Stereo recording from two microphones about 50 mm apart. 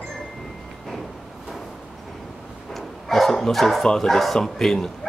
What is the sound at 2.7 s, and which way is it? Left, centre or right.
Bow-wow, centre.